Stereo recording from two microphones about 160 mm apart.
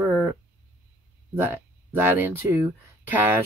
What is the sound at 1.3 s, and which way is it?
Speech, 15° right (ahead or behind).